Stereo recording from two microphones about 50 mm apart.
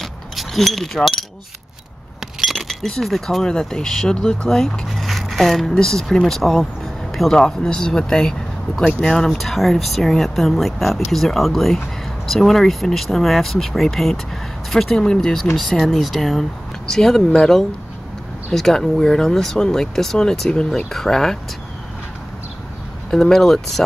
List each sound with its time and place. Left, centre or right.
0.0 s chink: centre
2.4 s speech: centre
4.5 s speech: centre
23.1 s speech: centre